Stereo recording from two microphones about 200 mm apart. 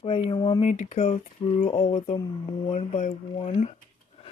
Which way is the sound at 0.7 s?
35° left (ahead or behind).